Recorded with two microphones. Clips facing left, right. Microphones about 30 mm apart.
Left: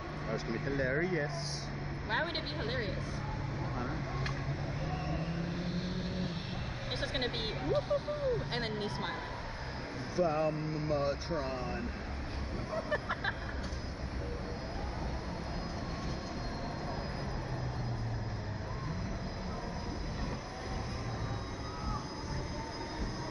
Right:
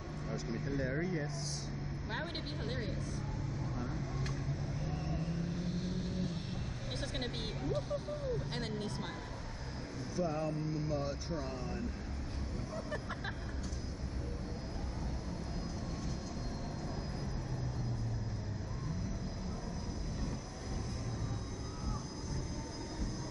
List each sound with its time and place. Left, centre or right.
0.3 s speech: left
3.8 s vehicle: left
7.0 s speech: left
10.1 s speech: left
12.7 s vehicle: left